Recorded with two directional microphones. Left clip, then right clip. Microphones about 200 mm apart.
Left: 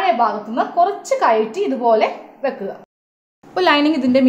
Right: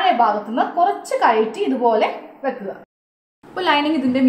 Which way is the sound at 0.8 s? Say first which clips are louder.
Left 3 dB; 35° left (ahead or behind).